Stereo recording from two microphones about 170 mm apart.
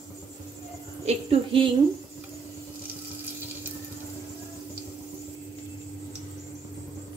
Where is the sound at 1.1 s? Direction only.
35° right (ahead or behind).